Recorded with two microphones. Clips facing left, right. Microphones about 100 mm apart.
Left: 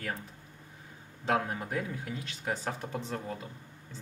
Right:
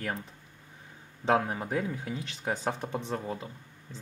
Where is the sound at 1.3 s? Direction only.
20° right (ahead or behind).